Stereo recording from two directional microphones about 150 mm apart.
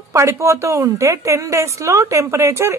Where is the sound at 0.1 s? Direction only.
20° right (ahead or behind).